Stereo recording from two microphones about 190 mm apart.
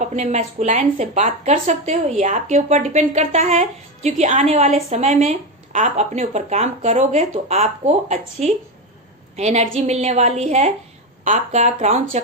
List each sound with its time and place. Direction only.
0.0 s a woman's voice: 35° right (ahead or behind)